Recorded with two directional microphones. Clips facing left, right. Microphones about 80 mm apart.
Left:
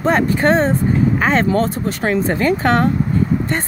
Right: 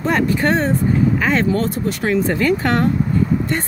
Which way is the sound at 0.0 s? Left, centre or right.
Left.